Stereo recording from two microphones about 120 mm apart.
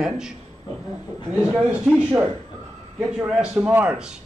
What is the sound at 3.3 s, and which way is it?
Speech, 10° right (ahead or behind).